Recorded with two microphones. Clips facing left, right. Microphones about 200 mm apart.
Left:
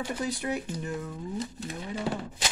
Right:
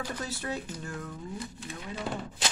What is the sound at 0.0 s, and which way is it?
Speech, 20° left (ahead or behind).